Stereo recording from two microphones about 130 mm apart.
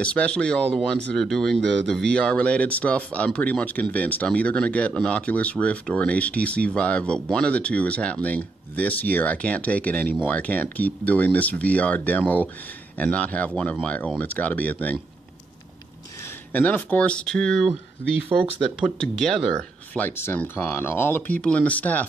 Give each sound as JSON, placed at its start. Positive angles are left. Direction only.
{"t": 0.0, "sound": "speech", "side_deg": 10}
{"t": 16.5, "sound": "speech", "side_deg": 10}
{"t": 18.3, "sound": "speech", "side_deg": -20}
{"t": 19.1, "sound": "speech", "side_deg": 5}